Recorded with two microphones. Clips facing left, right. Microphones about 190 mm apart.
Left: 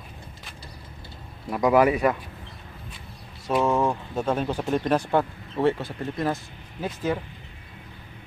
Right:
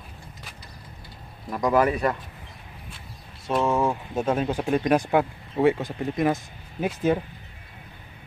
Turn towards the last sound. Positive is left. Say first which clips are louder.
# right 4 dB
turn(degrees=-20)  # may be behind; listen again after turning